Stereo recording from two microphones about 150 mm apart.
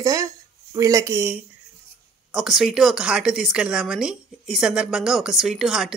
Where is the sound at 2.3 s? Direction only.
Centre (ahead or behind).